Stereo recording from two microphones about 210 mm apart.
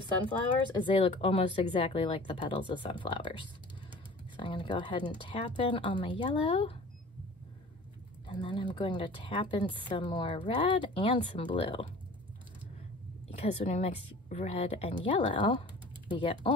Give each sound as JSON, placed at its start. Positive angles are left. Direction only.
{"t": 0.8, "sound": "a woman's voice", "side_deg": 25}
{"t": 8.3, "sound": "a woman's voice", "side_deg": 20}
{"t": 13.7, "sound": "a woman's voice", "side_deg": 30}